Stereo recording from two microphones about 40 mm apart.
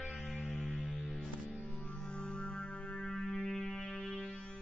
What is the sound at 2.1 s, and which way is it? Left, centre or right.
Music, left.